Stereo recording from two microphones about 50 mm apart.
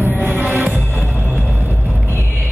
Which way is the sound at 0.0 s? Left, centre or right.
Right.